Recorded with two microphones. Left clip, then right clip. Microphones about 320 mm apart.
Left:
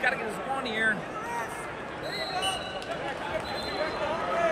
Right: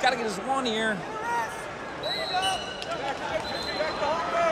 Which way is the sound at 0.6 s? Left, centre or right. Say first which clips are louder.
Even; centre.